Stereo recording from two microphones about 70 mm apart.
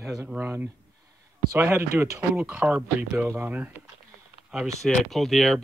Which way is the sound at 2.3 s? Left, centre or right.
Right.